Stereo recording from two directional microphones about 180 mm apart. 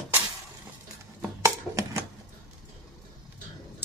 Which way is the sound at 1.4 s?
15° right (ahead or behind).